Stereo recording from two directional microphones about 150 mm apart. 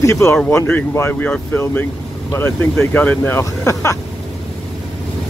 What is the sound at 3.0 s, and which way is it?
Speech, 15° left (ahead or behind).